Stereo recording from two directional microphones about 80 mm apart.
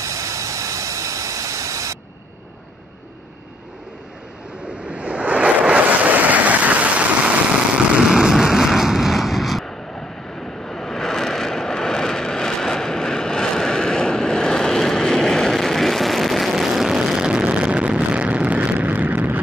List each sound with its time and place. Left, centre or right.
0.0 s vehicle: right
4.6 s waves: centre
7.7 s vehicle: centre; by 19.4 s right